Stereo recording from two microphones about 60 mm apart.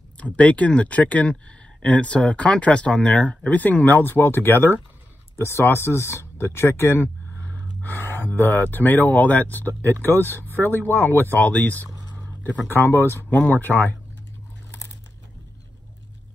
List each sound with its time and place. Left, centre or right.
0.2 s speech: left
7.4 s speech: left
12.6 s speech: left
13.3 s speech: left